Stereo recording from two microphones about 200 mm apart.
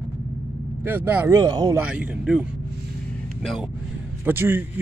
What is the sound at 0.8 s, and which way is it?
Speech, 10° right (ahead or behind).